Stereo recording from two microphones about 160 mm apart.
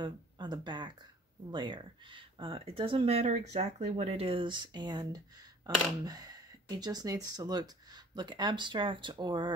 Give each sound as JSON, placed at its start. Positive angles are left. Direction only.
{"t": 0.0, "sound": "speech", "side_deg": -30}